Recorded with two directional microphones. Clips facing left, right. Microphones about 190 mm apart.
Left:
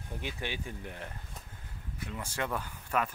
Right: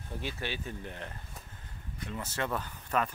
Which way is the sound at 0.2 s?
15° left (ahead or behind).